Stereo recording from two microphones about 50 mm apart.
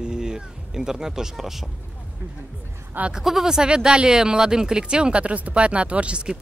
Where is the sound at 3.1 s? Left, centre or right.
Centre.